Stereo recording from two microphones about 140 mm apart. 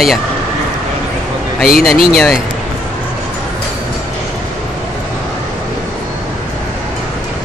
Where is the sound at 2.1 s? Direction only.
Centre (ahead or behind).